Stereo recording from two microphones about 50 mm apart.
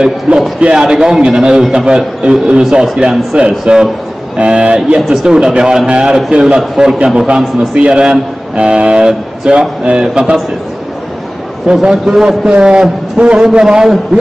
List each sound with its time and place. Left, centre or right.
0.0 s a man's voice: centre
7.2 s a man's voice: right
11.6 s a man's voice: centre